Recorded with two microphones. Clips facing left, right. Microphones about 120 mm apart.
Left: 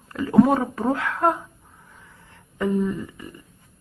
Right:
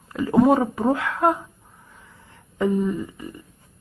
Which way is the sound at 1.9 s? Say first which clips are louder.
Right 1 dB; 15° right (ahead or behind).